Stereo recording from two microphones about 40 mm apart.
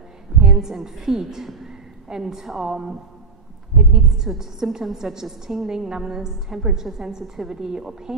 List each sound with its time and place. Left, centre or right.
0.4 s a woman's voice: centre
3.7 s a sound: centre
4.3 s a woman's voice: centre